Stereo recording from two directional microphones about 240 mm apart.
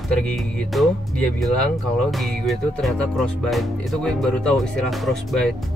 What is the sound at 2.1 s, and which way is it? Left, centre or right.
Music, centre.